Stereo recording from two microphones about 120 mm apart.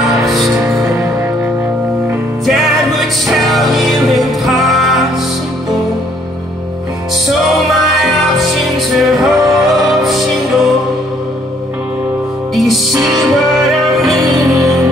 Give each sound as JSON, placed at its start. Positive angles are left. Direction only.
{"t": 0.3, "sound": "music", "side_deg": -5}
{"t": 0.8, "sound": "music", "side_deg": -25}
{"t": 2.4, "sound": "music", "side_deg": 0}
{"t": 7.2, "sound": "music", "side_deg": 0}
{"t": 12.5, "sound": "music", "side_deg": 0}
{"t": 14.2, "sound": "music", "side_deg": -35}